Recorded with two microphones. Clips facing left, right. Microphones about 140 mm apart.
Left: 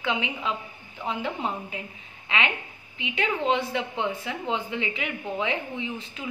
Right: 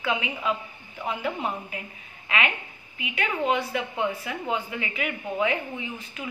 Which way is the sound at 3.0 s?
25° left (ahead or behind).